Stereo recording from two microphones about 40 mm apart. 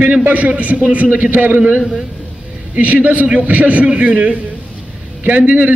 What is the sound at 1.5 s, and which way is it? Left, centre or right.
Speech, right.